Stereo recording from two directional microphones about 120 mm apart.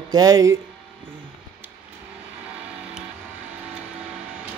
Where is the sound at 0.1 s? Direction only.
30° right (ahead or behind).